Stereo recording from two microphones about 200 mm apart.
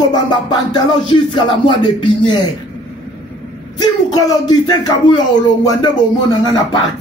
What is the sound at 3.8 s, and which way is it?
Speech, 20° left (ahead or behind).